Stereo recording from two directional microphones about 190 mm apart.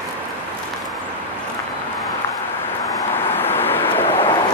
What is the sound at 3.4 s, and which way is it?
Vehicle, 10° left (ahead or behind).